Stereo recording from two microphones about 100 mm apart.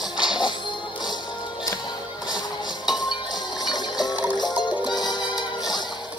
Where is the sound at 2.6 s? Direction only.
45° left (ahead or behind).